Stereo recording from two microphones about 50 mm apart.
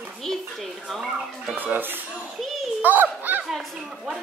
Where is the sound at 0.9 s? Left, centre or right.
Centre.